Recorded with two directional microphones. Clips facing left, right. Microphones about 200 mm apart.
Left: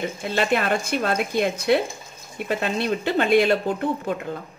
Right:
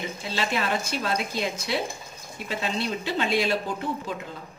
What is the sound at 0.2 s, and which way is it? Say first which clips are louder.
A woman's voice: left 6 dB; 55° left (ahead or behind).